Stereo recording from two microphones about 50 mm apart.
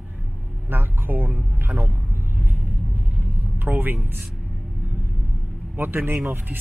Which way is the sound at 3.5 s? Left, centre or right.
Right.